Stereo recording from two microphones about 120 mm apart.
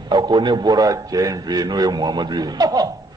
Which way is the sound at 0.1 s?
40° right (ahead or behind).